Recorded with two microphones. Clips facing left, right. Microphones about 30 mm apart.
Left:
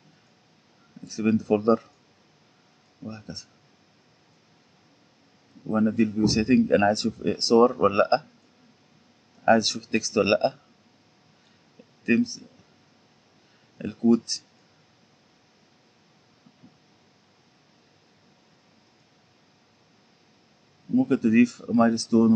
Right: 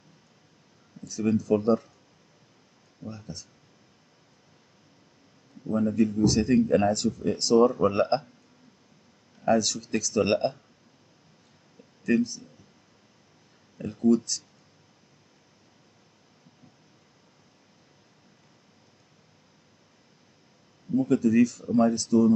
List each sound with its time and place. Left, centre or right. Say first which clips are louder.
1.0 s speech: left 2 dB; left
3.0 s speech: left 2 dB; left
5.7 s speech: left 2 dB; left
9.4 s speech: left 3 dB; left
12.0 s speech: left 2 dB; left
13.7 s speech: left 1 dB; left
20.9 s speech: left 2 dB; left